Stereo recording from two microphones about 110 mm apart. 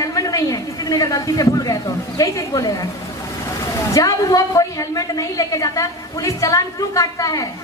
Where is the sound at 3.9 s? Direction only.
30° left (ahead or behind).